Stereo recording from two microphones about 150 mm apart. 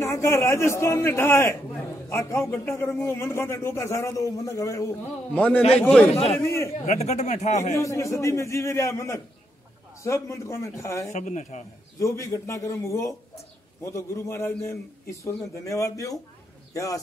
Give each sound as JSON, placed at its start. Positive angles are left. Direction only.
{"t": 0.0, "sound": "a man's voice", "side_deg": 20}
{"t": 6.1, "sound": "a man's voice", "side_deg": 40}
{"t": 6.4, "sound": "a man's voice", "side_deg": 20}
{"t": 6.9, "sound": "speech", "side_deg": 50}
{"t": 7.7, "sound": "a man's voice", "side_deg": 20}
{"t": 11.1, "sound": "speech", "side_deg": 55}
{"t": 12.0, "sound": "a man's voice", "side_deg": 20}